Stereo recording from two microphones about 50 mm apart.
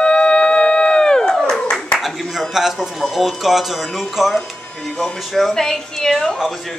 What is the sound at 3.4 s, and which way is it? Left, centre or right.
Speech, centre.